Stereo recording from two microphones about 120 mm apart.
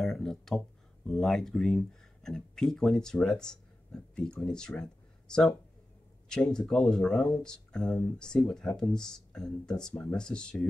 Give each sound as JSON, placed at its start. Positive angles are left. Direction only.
{"t": 0.0, "sound": "speech", "side_deg": 5}